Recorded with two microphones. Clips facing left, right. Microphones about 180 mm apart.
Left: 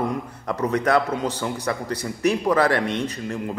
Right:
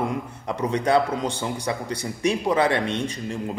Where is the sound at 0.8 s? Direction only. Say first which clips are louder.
Right 1 dB; 30° right (ahead or behind).